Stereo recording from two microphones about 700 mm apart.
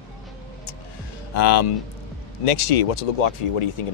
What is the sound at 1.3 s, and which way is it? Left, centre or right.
Speech, left.